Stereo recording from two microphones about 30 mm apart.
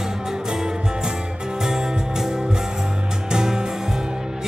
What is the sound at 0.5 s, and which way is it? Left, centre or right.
Music, centre.